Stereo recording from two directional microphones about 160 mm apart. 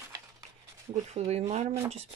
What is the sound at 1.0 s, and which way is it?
Speech, 40° right (ahead or behind).